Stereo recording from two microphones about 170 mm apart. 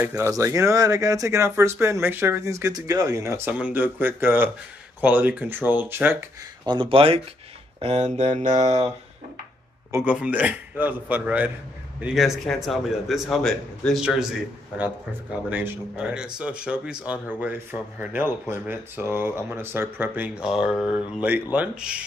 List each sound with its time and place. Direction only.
0.0 s speech: 15° right (ahead or behind)
6.6 s speech: 30° right (ahead or behind)
9.8 s a man's voice: 10° right (ahead or behind)
15.5 s a man's voice: 10° right (ahead or behind)